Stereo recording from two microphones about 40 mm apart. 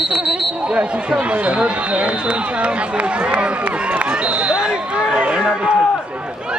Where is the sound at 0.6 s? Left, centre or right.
Right.